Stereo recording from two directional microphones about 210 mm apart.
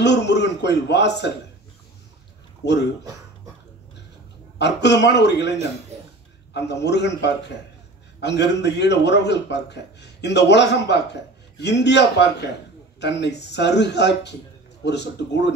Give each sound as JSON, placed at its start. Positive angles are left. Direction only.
{"t": 0.0, "sound": "a man's voice", "side_deg": 55}
{"t": 4.6, "sound": "a man's voice", "side_deg": 55}
{"t": 6.5, "sound": "a man's voice", "side_deg": 55}